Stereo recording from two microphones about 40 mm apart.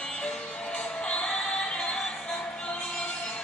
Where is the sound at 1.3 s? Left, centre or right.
Centre.